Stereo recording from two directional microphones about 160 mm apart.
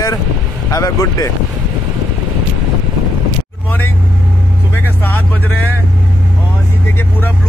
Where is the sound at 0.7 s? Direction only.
20° left (ahead or behind).